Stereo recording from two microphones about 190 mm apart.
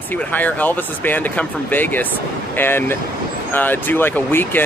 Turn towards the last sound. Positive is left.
turn(degrees=10)  # may be behind; listen again after turning